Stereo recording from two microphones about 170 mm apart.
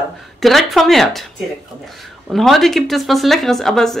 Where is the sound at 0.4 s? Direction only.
Centre (ahead or behind).